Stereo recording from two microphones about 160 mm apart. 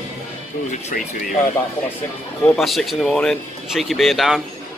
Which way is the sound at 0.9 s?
60° left (ahead or behind).